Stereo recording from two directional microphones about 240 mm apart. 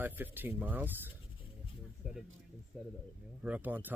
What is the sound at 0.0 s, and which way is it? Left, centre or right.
Speech, centre.